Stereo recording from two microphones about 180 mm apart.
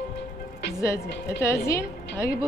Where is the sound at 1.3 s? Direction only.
15° left (ahead or behind).